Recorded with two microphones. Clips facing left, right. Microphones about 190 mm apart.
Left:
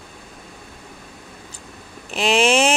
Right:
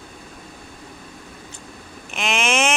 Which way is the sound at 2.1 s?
35° left (ahead or behind).